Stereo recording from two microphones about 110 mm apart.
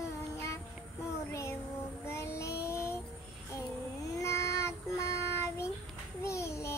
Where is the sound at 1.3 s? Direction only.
25° left (ahead or behind).